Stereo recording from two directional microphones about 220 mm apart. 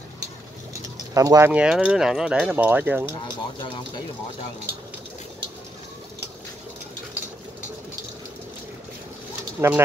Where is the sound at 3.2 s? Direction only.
20° left (ahead or behind).